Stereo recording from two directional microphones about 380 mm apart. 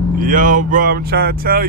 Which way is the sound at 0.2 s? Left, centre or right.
Right.